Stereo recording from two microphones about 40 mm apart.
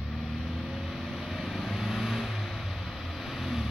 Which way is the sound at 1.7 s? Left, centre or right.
Centre.